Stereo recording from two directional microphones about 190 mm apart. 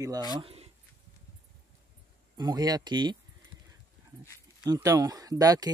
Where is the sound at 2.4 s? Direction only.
20° right (ahead or behind).